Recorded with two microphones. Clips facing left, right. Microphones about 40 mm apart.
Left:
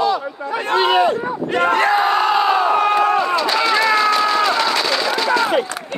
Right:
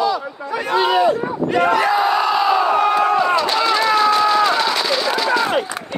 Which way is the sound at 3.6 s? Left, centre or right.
Left.